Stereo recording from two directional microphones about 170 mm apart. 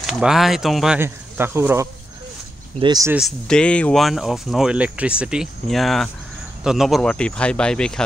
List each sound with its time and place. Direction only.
0.0 s speech: centre (ahead or behind)
0.9 s speech: 10° right (ahead or behind)
3.1 s speech: centre (ahead or behind)